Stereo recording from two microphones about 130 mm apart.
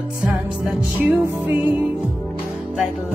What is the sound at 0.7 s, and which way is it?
Music, 10° right (ahead or behind).